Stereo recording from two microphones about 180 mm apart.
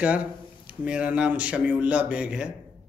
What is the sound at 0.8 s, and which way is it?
Speech, 5° right (ahead or behind).